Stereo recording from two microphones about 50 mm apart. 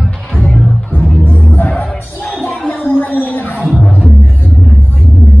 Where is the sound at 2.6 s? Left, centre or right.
Left.